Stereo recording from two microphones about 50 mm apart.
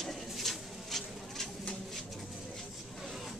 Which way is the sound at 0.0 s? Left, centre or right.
Centre.